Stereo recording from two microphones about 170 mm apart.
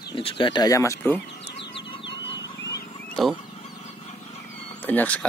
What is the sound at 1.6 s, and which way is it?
Bird, 90° left.